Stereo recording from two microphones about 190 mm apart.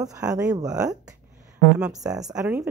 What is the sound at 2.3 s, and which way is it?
Speech, 5° right (ahead or behind).